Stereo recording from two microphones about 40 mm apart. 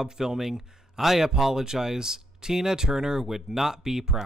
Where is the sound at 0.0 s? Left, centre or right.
Centre.